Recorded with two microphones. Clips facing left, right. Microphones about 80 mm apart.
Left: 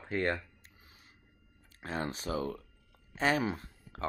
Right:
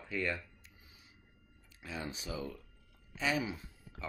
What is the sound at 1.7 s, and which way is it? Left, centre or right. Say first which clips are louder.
Speech: left 6 dB; left.